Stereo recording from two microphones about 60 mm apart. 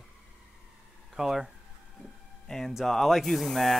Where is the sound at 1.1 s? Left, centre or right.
Centre.